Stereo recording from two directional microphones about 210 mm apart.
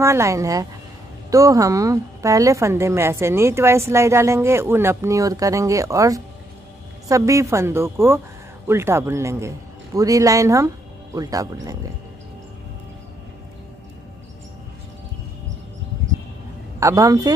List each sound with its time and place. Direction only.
0.0 s a woman's voice: 15° right (ahead or behind)
16.8 s a woman's voice: 15° right (ahead or behind)